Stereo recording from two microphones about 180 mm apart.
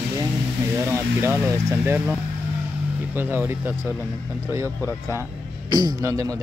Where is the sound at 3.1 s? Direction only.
10° right (ahead or behind).